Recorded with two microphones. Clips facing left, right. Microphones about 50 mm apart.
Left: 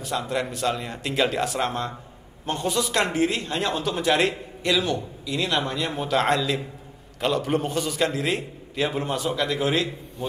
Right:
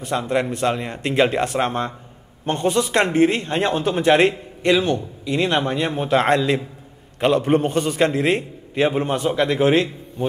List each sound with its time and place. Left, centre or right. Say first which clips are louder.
0.3 s speech: right 6 dB; right